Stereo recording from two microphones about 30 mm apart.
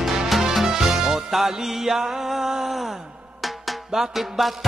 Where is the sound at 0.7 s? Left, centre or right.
Centre.